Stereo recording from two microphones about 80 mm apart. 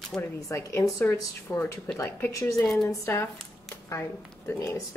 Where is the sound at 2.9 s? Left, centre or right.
Left.